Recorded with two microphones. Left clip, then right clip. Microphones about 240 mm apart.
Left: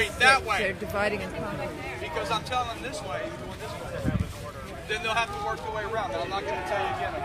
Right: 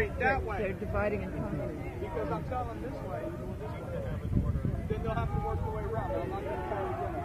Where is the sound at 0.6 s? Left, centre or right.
Left.